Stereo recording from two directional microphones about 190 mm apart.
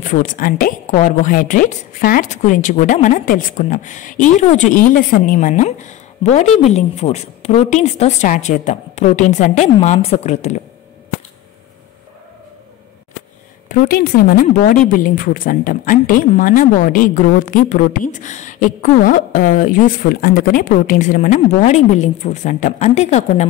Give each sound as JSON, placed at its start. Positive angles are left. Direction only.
{"t": 0.0, "sound": "a woman's voice", "side_deg": 40}
{"t": 13.7, "sound": "a woman's voice", "side_deg": 50}